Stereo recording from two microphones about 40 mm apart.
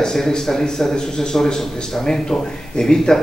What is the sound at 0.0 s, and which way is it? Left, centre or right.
A man's voice, centre.